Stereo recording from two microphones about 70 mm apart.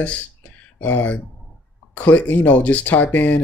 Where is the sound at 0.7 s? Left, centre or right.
Left.